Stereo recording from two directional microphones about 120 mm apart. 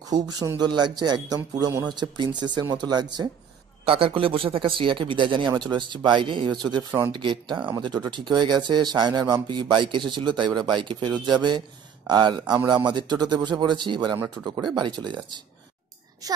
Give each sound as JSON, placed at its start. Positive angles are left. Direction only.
{"t": 0.1, "sound": "speech", "side_deg": -35}
{"t": 3.8, "sound": "speech", "side_deg": -50}